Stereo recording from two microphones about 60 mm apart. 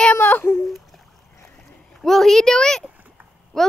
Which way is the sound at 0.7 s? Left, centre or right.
Centre.